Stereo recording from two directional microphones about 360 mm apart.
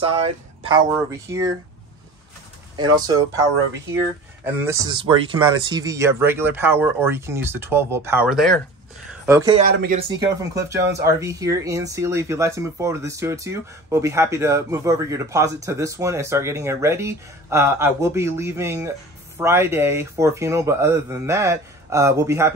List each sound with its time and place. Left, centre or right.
0.1 s speech: centre
2.7 s speech: centre
4.5 s speech: centre
9.7 s speech: right